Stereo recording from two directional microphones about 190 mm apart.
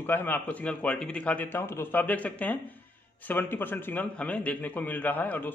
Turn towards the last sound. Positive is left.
turn(degrees=10)  # may be behind; listen again after turning